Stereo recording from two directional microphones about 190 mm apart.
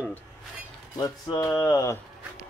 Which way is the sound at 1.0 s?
20° left (ahead or behind).